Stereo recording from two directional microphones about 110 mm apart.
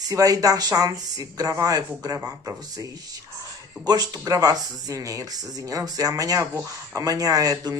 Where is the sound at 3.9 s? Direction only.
35° right (ahead or behind).